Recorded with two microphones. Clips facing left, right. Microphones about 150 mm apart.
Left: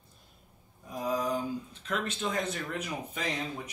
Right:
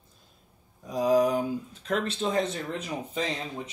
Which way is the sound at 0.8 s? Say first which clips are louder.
Right 9 dB; 90° right.